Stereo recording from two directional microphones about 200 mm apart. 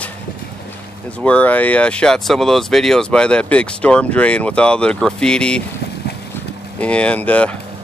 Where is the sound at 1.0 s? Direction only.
5° left (ahead or behind).